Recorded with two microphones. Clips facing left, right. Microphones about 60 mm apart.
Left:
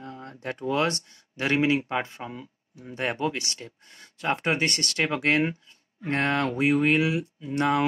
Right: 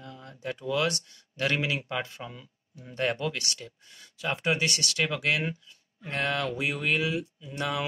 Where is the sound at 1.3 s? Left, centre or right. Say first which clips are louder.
Left 5 dB; left.